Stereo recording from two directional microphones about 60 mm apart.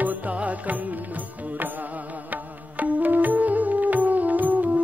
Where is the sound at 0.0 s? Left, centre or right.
Right.